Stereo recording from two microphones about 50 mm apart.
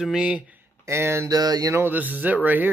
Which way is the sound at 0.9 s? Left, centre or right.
Right.